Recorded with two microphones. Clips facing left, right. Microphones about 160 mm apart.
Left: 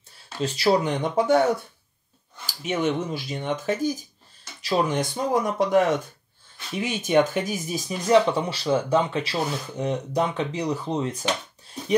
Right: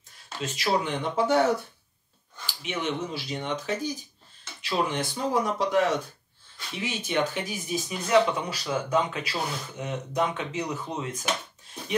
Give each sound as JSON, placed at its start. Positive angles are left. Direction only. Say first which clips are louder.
{"t": 0.4, "sound": "speech", "louder": "left 6 dB", "side_deg": 35}
{"t": 1.1, "sound": "speech", "louder": "left 3 dB", "side_deg": 50}
{"t": 2.4, "sound": "speech", "louder": "left 6 dB", "side_deg": 45}